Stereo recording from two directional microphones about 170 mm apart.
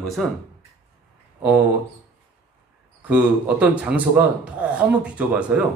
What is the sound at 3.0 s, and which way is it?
Speech, 10° right (ahead or behind).